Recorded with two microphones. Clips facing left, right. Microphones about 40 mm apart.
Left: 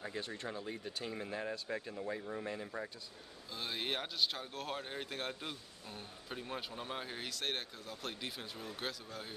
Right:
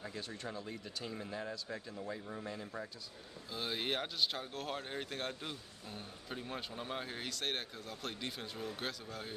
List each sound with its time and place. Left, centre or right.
0.0 s speech: left
2.0 s speech: centre
3.5 s speech: centre